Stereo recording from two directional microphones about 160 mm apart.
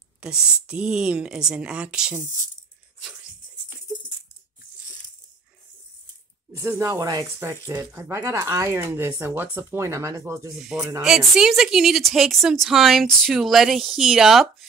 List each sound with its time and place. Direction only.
0.2 s speech: 5° right (ahead or behind)
6.5 s speech: 15° right (ahead or behind)
11.0 s speech: 5° right (ahead or behind)